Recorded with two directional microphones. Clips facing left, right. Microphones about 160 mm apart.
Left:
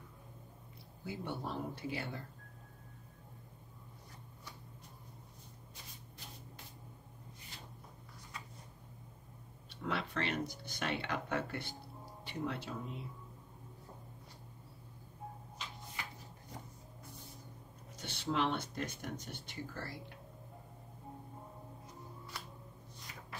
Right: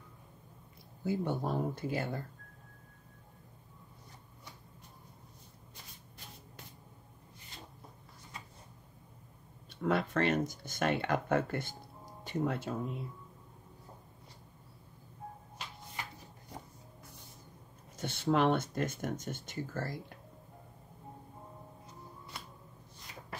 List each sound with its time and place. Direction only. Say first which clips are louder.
1.0 s speech: right 8 dB; 45° right (ahead or behind)
9.7 s speech: right 8 dB; 45° right (ahead or behind)
17.9 s speech: right 6 dB; 50° right (ahead or behind)